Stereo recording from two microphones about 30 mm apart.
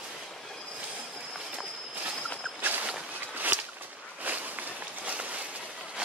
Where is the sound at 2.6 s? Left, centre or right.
Right.